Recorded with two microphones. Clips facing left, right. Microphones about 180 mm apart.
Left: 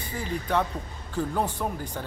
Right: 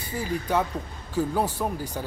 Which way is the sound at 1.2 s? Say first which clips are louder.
Right 2 dB; 10° right (ahead or behind).